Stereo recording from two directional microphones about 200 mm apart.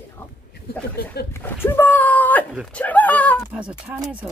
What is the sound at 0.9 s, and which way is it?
Speech, 50° left (ahead or behind).